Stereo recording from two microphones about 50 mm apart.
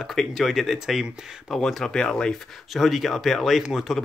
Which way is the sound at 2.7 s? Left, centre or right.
Centre.